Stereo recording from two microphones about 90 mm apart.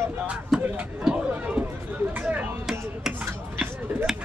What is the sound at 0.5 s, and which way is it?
Speech, 5° right (ahead or behind).